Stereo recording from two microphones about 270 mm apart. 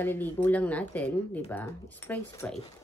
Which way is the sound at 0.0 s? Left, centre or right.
Centre.